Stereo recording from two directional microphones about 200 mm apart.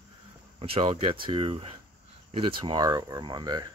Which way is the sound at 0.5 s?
30° right (ahead or behind).